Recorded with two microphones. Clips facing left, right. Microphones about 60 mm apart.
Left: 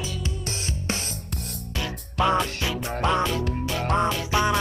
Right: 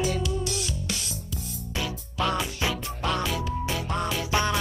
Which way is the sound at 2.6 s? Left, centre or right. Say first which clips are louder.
Even; right.